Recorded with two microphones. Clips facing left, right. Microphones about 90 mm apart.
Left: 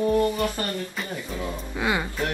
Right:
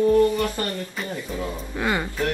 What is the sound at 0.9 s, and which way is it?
Speech, centre (ahead or behind).